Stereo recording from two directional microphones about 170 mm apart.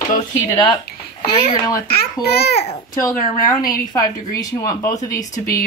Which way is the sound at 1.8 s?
70° left (ahead or behind).